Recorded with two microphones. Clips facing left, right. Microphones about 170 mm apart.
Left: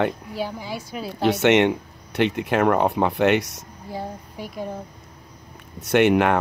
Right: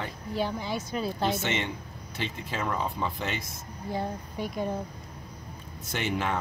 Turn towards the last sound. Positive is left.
turn(degrees=65)  # may be behind; listen again after turning